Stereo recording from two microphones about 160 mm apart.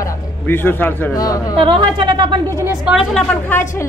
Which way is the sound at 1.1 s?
20° left (ahead or behind).